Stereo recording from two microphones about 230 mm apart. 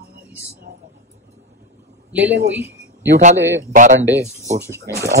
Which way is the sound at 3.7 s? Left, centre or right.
Right.